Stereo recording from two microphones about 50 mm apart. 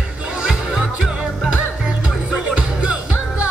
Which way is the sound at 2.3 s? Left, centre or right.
Centre.